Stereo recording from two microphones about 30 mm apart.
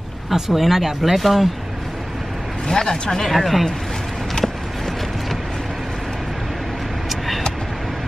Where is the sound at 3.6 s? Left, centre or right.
Centre.